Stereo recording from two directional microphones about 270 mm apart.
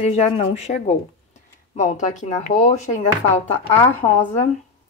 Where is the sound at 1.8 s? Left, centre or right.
Left.